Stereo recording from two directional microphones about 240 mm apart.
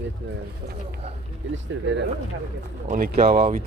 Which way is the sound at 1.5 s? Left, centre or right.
Right.